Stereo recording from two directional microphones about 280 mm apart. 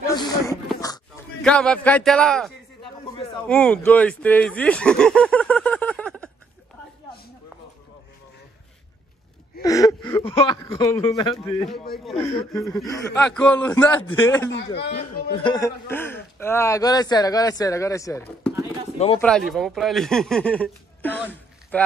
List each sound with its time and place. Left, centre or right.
0.1 s a sound: centre
0.7 s speech: centre
9.6 s speech: centre
11.3 s speech: centre
12.2 s a man's voice: centre
14.5 s speech: left
15.3 s a man's voice: centre